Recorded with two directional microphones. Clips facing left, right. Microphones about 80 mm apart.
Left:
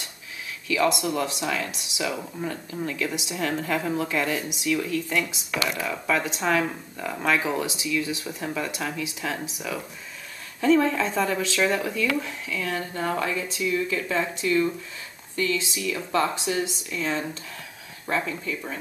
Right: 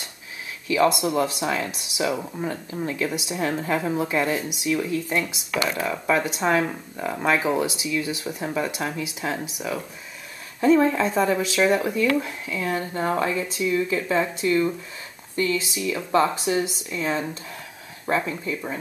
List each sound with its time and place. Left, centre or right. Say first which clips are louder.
0.7 s speech: right 3 dB; right
10.6 s speech: right 2 dB; right